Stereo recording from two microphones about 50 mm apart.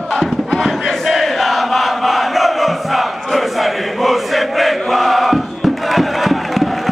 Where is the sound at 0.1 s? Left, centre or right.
Centre.